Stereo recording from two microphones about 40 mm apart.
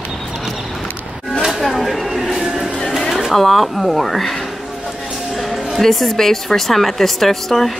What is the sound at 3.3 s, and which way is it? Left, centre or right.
A woman's voice, centre.